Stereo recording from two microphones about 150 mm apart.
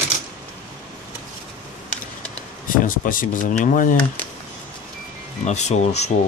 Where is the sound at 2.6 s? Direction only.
65° left (ahead or behind).